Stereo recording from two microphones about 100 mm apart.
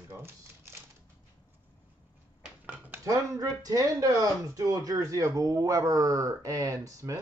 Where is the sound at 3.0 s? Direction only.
35° right (ahead or behind).